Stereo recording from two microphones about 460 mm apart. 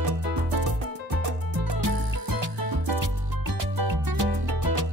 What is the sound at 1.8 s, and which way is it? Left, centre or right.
Music, right.